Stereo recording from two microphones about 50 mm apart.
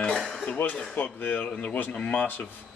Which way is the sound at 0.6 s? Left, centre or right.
Left.